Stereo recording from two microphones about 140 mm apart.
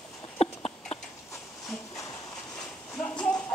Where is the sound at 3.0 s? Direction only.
10° left (ahead or behind).